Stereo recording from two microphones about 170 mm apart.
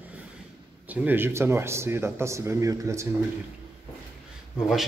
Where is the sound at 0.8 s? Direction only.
10° right (ahead or behind).